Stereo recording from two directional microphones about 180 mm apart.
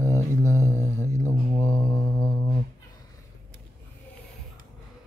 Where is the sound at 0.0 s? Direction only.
15° left (ahead or behind).